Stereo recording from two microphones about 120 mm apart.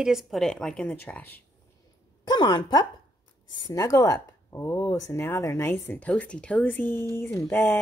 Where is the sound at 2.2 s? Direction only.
40° left (ahead or behind).